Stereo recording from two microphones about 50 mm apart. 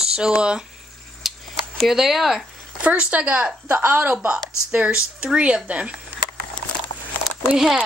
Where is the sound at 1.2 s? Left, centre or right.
Centre.